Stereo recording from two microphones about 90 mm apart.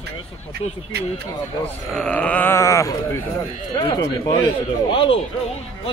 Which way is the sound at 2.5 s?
35° left (ahead or behind).